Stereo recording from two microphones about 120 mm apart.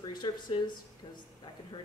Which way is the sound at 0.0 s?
40° left (ahead or behind).